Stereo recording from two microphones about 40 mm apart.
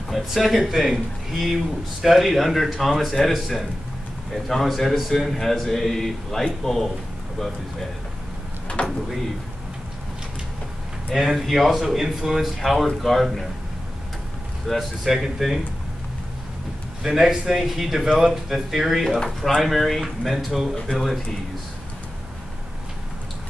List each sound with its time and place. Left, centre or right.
0.1 s a man's voice: centre
8.8 s a sound: left
11.1 s speech: centre
14.7 s speech: centre
17.0 s a man's voice: centre
19.0 s speech: centre